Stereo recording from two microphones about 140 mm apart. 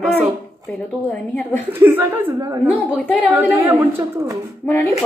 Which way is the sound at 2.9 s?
10° left (ahead or behind).